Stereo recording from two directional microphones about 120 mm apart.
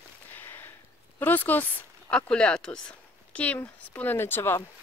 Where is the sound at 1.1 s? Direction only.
15° left (ahead or behind).